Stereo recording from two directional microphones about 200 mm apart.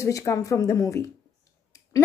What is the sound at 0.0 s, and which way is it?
A woman's voice, 15° left (ahead or behind).